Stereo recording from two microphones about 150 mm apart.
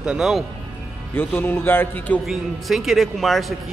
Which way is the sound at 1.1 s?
15° left (ahead or behind).